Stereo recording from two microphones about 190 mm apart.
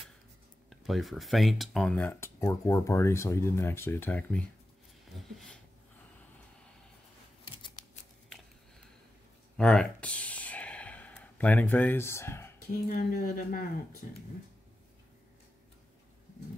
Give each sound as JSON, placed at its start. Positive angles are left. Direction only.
{"t": 0.7, "sound": "speech", "side_deg": 0}
{"t": 7.4, "sound": "scissors", "side_deg": 25}
{"t": 9.6, "sound": "a sound", "side_deg": 5}
{"t": 12.8, "sound": "speech", "side_deg": 50}